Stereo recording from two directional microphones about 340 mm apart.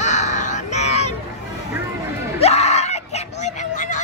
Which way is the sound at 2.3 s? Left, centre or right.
Centre.